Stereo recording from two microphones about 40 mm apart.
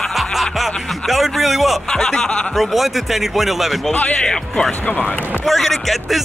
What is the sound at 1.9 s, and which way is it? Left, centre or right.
Speech, centre.